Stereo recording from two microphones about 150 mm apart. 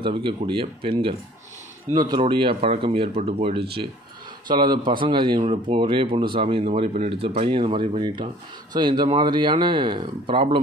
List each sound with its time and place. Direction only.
0.0 s speech: 35° right (ahead or behind)
4.5 s speech: 30° right (ahead or behind)